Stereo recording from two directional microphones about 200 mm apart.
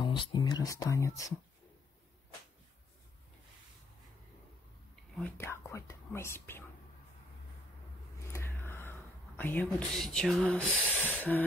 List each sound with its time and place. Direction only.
0.0 s speech: 25° left (ahead or behind)
5.1 s speech: 10° left (ahead or behind)
8.3 s a sound: 10° left (ahead or behind)
9.4 s speech: 10° left (ahead or behind)